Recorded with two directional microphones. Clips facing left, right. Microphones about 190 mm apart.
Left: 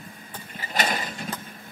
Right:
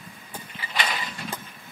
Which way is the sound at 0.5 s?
45° left (ahead or behind).